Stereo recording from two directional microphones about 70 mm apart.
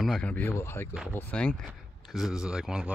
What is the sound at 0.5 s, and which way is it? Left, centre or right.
Speech, left.